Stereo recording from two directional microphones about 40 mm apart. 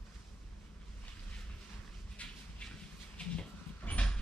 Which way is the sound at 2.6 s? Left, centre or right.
Left.